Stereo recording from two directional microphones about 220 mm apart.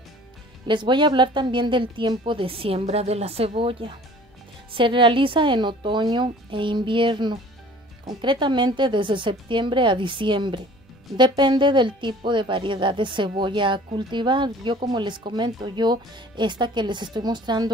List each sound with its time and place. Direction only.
0.7 s speech: 20° right (ahead or behind)